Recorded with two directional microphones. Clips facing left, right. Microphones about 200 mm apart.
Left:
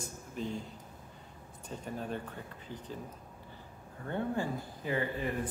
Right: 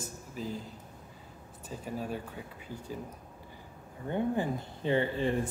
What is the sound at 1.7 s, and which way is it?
Speech, 5° right (ahead or behind).